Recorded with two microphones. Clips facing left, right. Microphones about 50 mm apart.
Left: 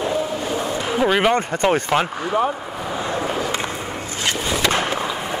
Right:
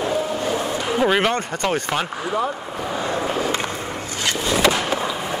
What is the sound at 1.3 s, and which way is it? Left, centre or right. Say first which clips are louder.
Speech: left 4 dB; left.